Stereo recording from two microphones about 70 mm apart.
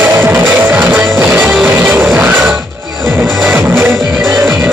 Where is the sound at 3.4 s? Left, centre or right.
Right.